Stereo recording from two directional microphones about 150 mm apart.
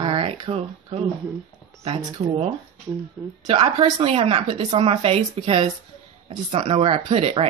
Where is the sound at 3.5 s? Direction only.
40° right (ahead or behind).